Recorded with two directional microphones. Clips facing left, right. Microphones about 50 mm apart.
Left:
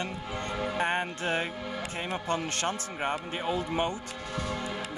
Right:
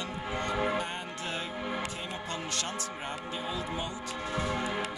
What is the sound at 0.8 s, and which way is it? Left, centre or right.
A man's voice, left.